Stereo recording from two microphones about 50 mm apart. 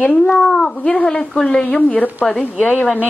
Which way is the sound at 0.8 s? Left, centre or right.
Left.